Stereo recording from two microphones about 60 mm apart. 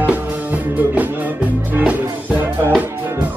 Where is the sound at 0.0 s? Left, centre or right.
Right.